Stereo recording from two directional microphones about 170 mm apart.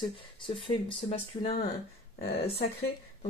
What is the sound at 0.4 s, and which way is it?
Speech, 30° left (ahead or behind).